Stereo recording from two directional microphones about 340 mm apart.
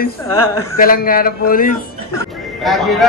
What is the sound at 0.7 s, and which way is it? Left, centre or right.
Speech, left.